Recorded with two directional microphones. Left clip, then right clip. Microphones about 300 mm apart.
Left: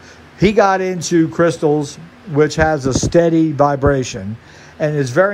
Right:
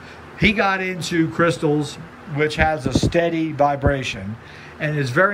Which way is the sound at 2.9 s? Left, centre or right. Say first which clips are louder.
Left 1 dB; left.